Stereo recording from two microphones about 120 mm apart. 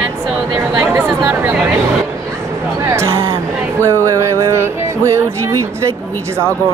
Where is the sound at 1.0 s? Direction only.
15° right (ahead or behind).